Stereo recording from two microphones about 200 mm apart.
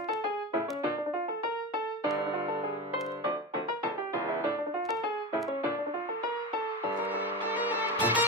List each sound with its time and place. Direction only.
7.5 s music: 10° right (ahead or behind)